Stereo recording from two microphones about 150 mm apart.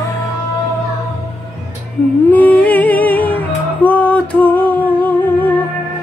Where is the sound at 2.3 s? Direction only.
10° left (ahead or behind).